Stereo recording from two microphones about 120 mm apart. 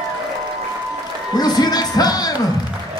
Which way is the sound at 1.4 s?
35° left (ahead or behind).